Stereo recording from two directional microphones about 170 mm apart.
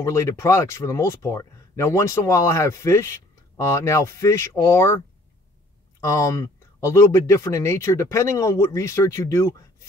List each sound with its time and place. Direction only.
0.0 s speech: 15° left (ahead or behind)